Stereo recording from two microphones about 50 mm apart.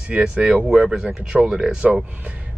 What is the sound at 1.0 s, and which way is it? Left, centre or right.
Speech, right.